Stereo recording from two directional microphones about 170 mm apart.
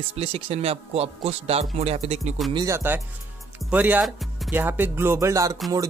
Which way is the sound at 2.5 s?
20° right (ahead or behind).